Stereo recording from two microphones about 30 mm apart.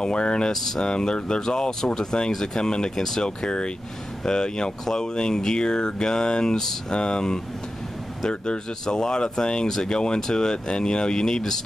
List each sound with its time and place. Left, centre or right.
0.0 s speech: left
0.5 s speech: centre
0.9 s speech: left
6.9 s speech: left
8.9 s speech: left